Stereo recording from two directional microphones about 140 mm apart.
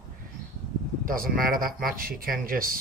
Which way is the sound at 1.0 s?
90° right.